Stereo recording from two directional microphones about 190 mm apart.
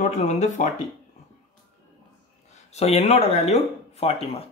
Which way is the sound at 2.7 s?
35° left (ahead or behind).